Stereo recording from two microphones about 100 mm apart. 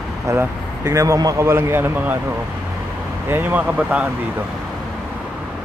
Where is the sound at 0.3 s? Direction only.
30° right (ahead or behind).